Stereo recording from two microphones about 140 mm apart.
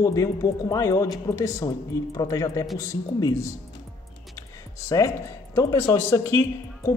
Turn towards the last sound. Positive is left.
turn(degrees=20)  # may be behind; listen again after turning